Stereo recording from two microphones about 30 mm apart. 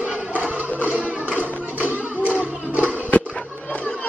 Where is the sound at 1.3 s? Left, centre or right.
Right.